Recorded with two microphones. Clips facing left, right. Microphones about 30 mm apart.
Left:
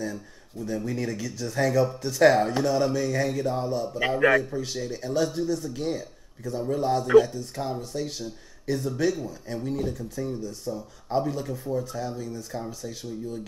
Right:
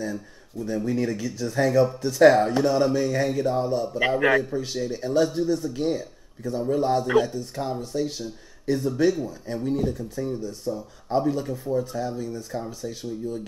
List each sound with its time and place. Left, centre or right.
0.0 s speech: centre